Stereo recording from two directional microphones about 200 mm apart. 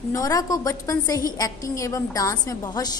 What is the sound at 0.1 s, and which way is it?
A woman's voice, 15° left (ahead or behind).